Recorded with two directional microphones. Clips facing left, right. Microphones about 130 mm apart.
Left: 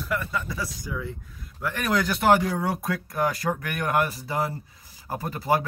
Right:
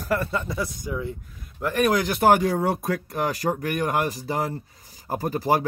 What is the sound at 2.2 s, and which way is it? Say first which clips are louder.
Speech: right 3 dB; 40° right (ahead or behind).